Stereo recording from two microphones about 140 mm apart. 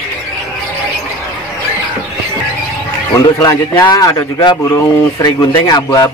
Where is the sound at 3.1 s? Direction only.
30° left (ahead or behind).